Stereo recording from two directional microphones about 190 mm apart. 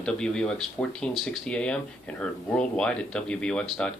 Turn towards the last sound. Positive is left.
turn(degrees=5)  # may be behind; listen again after turning